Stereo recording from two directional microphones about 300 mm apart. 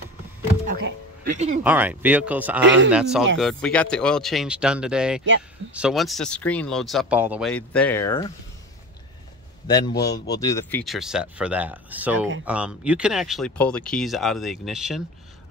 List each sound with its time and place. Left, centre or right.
0.7 s speech: right
1.6 s speech: centre
9.7 s a man's voice: centre